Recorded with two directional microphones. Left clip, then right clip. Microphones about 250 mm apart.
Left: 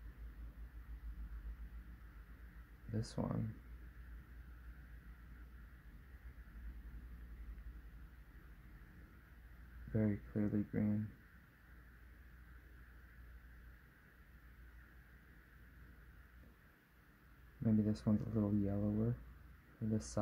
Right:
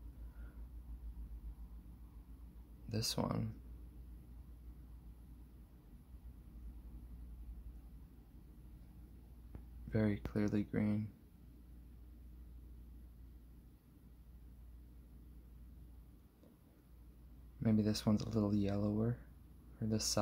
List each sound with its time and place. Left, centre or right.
2.9 s speech: centre
9.9 s speech: centre
17.6 s speech: centre
19.9 s speech: centre